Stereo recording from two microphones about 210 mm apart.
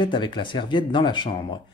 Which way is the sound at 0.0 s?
20° left (ahead or behind).